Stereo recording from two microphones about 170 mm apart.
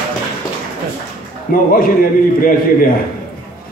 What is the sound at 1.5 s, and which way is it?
A man's voice, 55° left (ahead or behind).